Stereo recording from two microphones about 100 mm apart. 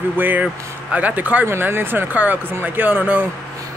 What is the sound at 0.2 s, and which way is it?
Speech, 20° right (ahead or behind).